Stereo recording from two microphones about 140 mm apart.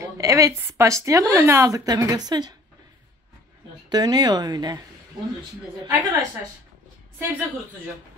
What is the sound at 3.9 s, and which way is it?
Speech, 30° right (ahead or behind).